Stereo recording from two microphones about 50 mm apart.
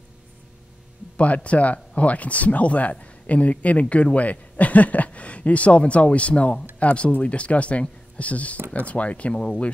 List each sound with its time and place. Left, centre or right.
1.1 s speech: left
9.3 s speech: centre